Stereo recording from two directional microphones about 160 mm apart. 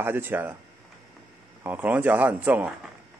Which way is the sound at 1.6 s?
10° right (ahead or behind).